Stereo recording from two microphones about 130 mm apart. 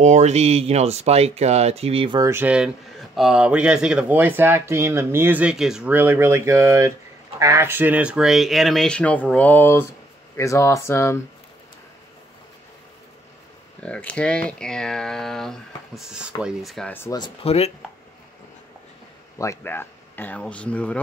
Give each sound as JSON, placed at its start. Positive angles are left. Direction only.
{"t": 0.0, "sound": "speech", "side_deg": -60}
{"t": 2.1, "sound": "speech", "side_deg": -20}
{"t": 2.4, "sound": "speech", "side_deg": -10}
{"t": 5.9, "sound": "speech", "side_deg": -15}
{"t": 13.8, "sound": "speech", "side_deg": 10}
{"t": 17.4, "sound": "speech", "side_deg": 50}
{"t": 19.3, "sound": "speech", "side_deg": 25}